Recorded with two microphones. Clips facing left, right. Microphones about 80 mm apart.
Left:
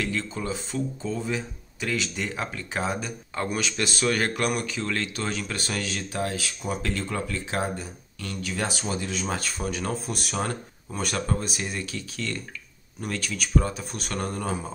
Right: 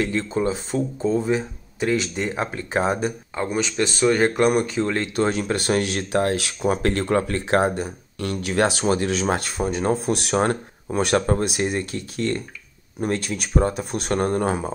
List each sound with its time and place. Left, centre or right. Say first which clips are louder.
0.0 s speech: right 7 dB; right
3.4 s speech: right 6 dB; right
4.5 s speech: right 8 dB; right
9.6 s speech: right 8 dB; right
10.0 s speech: right 9 dB; right